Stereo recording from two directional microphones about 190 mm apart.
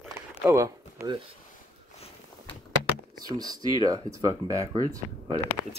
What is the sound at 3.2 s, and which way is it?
Speech, 20° right (ahead or behind).